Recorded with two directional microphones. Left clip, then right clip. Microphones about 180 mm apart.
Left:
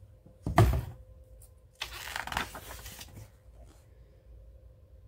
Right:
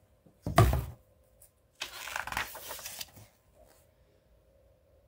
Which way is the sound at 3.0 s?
40° right (ahead or behind).